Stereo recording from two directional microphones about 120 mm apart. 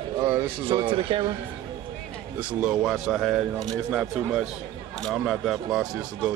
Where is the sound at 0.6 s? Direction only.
45° right (ahead or behind).